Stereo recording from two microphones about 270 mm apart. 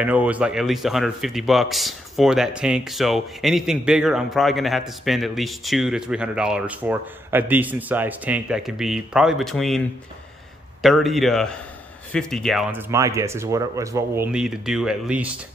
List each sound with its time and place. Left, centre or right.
0.0 s a man's voice: centre